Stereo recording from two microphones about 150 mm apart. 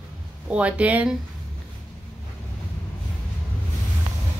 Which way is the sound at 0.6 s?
10° right (ahead or behind).